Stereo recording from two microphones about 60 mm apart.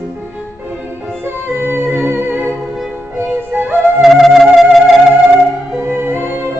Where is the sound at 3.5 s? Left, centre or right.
Right.